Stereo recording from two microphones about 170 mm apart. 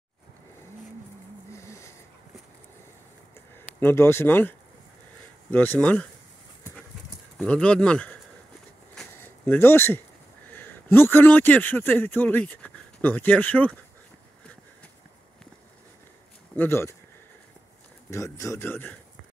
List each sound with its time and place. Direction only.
1.5 s a sound: 15° left (ahead or behind)
3.5 s speech: 15° left (ahead or behind)
7.3 s speech: 5° left (ahead or behind)
8.9 s a sound: 10° left (ahead or behind)
10.5 s a man's voice: 10° left (ahead or behind)
16.5 s speech: 15° left (ahead or behind)
18.1 s speech: 20° left (ahead or behind)